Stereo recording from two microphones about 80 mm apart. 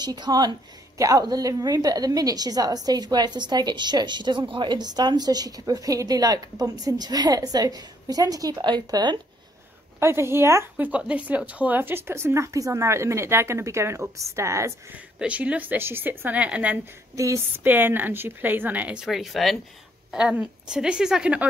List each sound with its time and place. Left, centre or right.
0.0 s a woman's voice: right
0.9 s a woman's voice: right
8.5 s speech: right
9.9 s speech: right
10.8 s speech: centre; by 14.7 s right
15.1 s a woman's voice: centre
17.1 s a sound: right
17.6 s a woman's voice: right
19.0 s a woman's voice: centre